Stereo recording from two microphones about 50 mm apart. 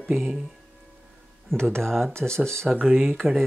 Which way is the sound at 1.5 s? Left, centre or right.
Centre.